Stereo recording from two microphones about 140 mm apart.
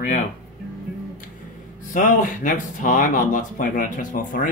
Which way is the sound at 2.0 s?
70° left (ahead or behind).